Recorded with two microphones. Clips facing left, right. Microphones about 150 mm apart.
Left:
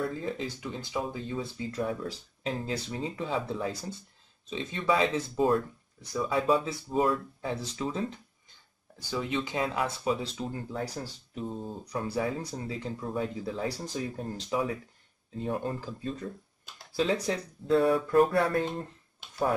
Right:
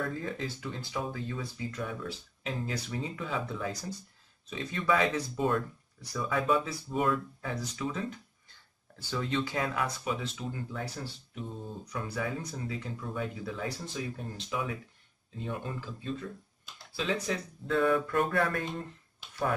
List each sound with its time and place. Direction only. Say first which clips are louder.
0.2 s speech: left 2 dB; 20° left (ahead or behind)
8.5 s speech: left 1 dB; 15° left (ahead or behind); by 18.9 s 35° left (ahead or behind)